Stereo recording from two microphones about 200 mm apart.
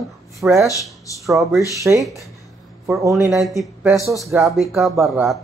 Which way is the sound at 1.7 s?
15° right (ahead or behind).